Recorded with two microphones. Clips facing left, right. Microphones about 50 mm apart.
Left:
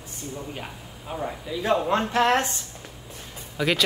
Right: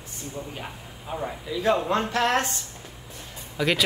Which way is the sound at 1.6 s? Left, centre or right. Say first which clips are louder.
Even; left.